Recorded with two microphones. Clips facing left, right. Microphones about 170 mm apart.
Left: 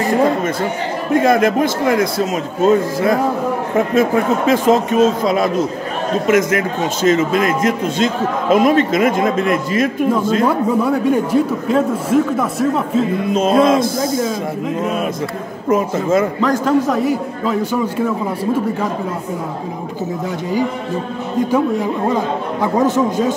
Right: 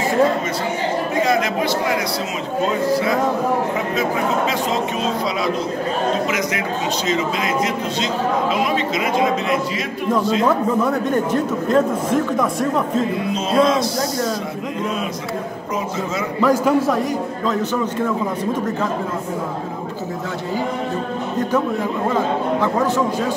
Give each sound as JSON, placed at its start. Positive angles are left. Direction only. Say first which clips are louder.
{"t": 1.2, "sound": "a man's voice", "louder": "left 6 dB", "side_deg": 50}
{"t": 4.5, "sound": "a man's voice", "louder": "left 8 dB", "side_deg": 50}
{"t": 10.4, "sound": "a man's voice", "louder": "left 2 dB", "side_deg": 10}
{"t": 13.3, "sound": "a man's voice", "louder": "left 5 dB", "side_deg": 50}
{"t": 15.7, "sound": "a man's voice", "louder": "left 10 dB", "side_deg": 50}
{"t": 16.3, "sound": "a man's voice", "louder": "left 1 dB", "side_deg": -10}
{"t": 17.0, "sound": "a man's voice", "louder": "left 3 dB", "side_deg": 5}
{"t": 21.4, "sound": "a man's voice", "louder": "left 4 dB", "side_deg": 10}